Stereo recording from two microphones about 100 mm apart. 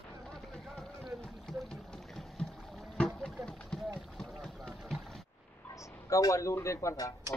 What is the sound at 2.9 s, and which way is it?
Run, 10° left (ahead or behind).